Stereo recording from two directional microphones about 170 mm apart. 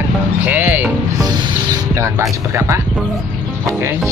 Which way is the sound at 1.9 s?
15° right (ahead or behind).